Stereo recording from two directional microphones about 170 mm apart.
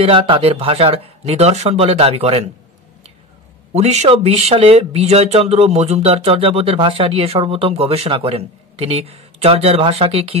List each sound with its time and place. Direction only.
0.0 s speech: 35° right (ahead or behind)
3.7 s speech: 40° right (ahead or behind)